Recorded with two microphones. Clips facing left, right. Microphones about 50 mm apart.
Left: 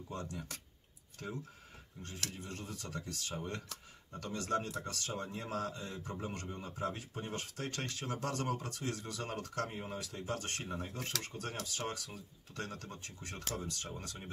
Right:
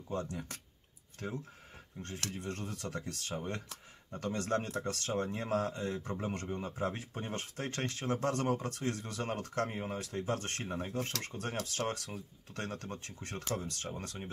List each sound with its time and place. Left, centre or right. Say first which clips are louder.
0.1 s speech: right 6 dB; right
2.0 s speech: right 4 dB; right